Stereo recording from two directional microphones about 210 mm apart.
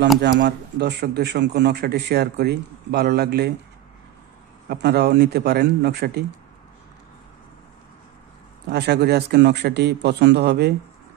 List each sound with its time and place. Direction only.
0.2 s a man's voice: 55° right (ahead or behind)
4.6 s a man's voice: 50° right (ahead or behind)
8.6 s a man's voice: 50° right (ahead or behind)